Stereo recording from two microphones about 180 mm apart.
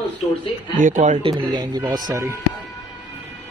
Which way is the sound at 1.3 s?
20° right (ahead or behind).